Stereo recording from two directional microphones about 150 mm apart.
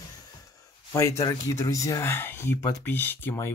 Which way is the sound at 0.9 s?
20° left (ahead or behind).